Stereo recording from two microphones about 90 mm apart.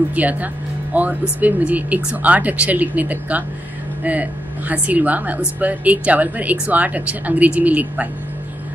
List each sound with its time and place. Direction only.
0.1 s speech: 15° right (ahead or behind)